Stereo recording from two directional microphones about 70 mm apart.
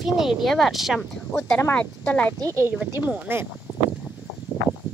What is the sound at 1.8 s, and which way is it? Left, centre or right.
Speech, centre.